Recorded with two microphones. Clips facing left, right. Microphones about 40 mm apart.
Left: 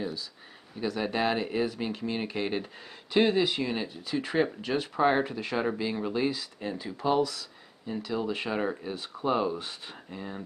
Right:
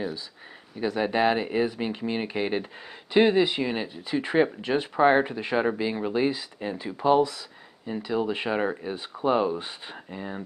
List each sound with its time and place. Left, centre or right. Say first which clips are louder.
0.7 s speech: right 5 dB; centre